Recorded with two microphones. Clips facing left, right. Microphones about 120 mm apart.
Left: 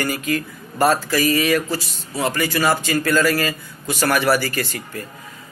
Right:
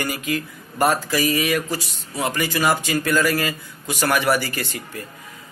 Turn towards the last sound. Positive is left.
turn(degrees=-20)  # may be behind; listen again after turning